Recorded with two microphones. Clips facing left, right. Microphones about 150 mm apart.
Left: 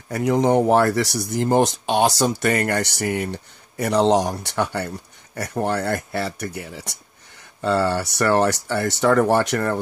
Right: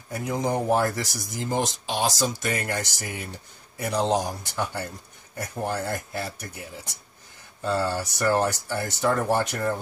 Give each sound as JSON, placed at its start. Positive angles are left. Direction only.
{"t": 0.1, "sound": "speech", "side_deg": 75}